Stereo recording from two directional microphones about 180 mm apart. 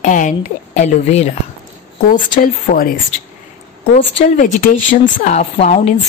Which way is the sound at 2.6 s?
50° left (ahead or behind).